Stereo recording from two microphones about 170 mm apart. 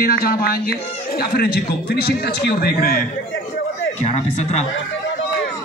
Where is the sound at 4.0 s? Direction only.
40° left (ahead or behind).